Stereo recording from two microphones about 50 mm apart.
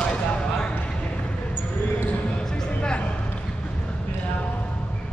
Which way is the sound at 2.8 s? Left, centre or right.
Left.